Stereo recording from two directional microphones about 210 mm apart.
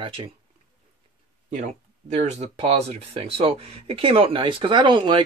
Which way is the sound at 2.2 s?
30° right (ahead or behind).